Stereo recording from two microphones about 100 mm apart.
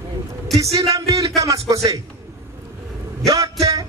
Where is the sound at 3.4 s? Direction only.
35° right (ahead or behind).